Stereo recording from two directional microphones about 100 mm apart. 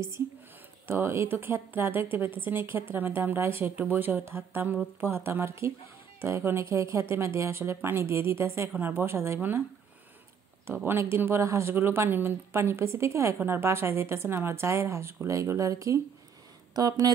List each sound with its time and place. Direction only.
0.8 s speech: 25° right (ahead or behind)
10.7 s speech: 20° right (ahead or behind); by 17.1 s 40° right (ahead or behind)